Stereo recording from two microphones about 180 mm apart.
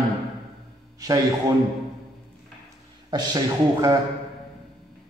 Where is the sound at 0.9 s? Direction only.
20° right (ahead or behind).